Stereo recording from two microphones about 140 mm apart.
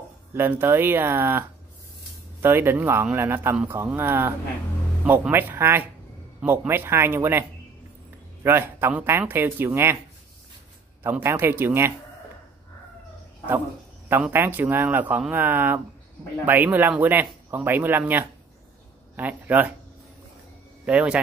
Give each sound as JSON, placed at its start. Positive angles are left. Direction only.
{"t": 0.3, "sound": "a man's voice", "side_deg": -15}
{"t": 2.4, "sound": "a man's voice", "side_deg": -15}
{"t": 8.5, "sound": "a man's voice", "side_deg": -15}
{"t": 11.0, "sound": "a man's voice", "side_deg": -15}
{"t": 14.0, "sound": "a man's voice", "side_deg": -15}
{"t": 20.8, "sound": "a man's voice", "side_deg": -10}